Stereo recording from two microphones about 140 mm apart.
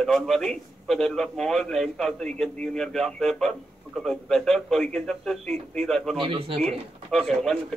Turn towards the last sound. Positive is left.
turn(degrees=0)  # may be behind; listen again after turning